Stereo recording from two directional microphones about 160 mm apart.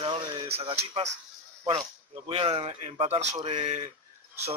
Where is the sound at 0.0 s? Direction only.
30° right (ahead or behind).